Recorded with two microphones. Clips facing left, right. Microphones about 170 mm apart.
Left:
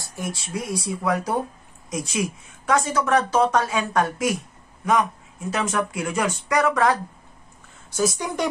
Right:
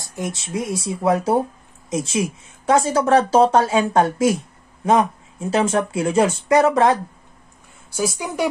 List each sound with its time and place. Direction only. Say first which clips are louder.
0.0 s speech: right 3 dB; 20° right (ahead or behind)
7.9 s speech: even; 10° right (ahead or behind)